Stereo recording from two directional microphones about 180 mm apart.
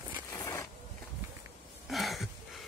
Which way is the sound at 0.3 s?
15° left (ahead or behind).